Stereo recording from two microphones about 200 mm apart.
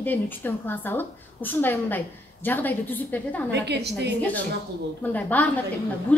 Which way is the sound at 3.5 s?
60° right (ahead or behind).